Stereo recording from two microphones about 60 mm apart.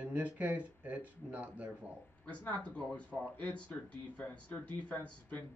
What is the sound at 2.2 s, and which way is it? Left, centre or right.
Speech, left.